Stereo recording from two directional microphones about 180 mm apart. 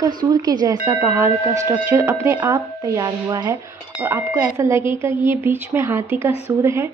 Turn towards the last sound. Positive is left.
turn(degrees=-15)  # may be behind; listen again after turning